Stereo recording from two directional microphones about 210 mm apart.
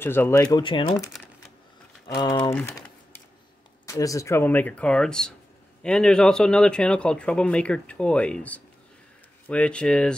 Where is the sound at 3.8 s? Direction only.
15° left (ahead or behind).